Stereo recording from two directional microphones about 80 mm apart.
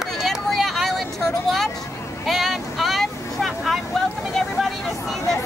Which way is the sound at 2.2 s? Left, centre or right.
Centre.